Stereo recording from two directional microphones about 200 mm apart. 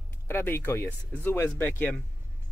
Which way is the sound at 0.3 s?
10° left (ahead or behind).